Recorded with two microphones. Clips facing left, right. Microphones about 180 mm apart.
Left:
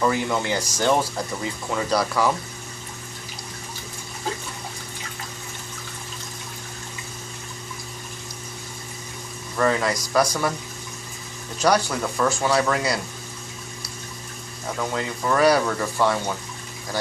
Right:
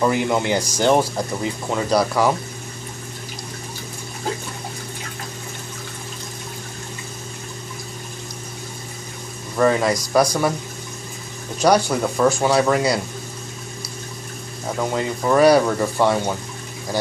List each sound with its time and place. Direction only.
0.0 s speech: 15° right (ahead or behind)
9.6 s speech: 15° right (ahead or behind)
11.6 s speech: 15° right (ahead or behind)
14.8 s speech: 15° right (ahead or behind)